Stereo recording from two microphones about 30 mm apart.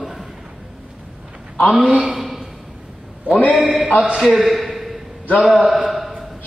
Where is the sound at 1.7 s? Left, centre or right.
Centre.